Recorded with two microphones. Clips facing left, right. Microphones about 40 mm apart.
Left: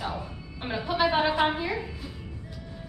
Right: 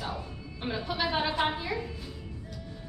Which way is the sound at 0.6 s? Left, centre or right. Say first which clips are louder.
Left 5 dB; centre.